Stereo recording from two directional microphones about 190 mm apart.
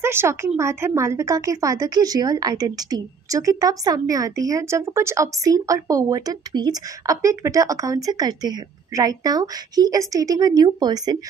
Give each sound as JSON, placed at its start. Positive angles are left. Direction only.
{"t": 0.0, "sound": "a woman's voice", "side_deg": -15}